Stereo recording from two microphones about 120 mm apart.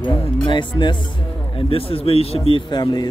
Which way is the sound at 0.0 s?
40° left (ahead or behind).